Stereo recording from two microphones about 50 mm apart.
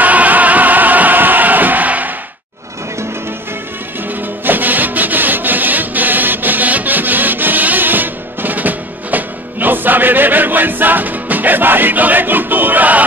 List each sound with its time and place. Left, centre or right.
0.0 s music: right
4.1 s music: right